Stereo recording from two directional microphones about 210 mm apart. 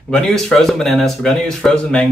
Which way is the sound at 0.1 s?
Centre (ahead or behind).